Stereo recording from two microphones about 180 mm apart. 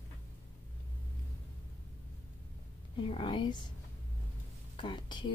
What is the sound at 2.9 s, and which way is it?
Speech, 30° left (ahead or behind).